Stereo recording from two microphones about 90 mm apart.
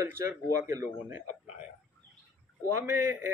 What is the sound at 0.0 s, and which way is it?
Speech, 30° right (ahead or behind).